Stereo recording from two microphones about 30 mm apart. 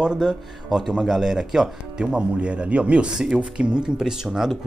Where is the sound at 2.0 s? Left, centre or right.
Right.